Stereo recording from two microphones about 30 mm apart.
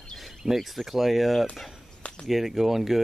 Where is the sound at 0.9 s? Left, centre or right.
Centre.